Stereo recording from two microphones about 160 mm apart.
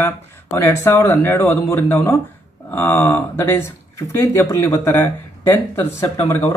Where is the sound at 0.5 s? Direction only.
15° left (ahead or behind).